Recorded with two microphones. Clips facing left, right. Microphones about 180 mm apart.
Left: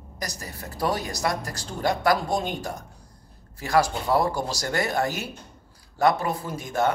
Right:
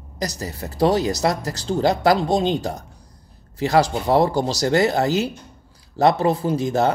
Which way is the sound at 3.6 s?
25° right (ahead or behind).